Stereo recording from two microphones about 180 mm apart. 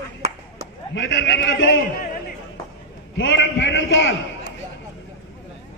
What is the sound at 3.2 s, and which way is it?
Speech, 85° left.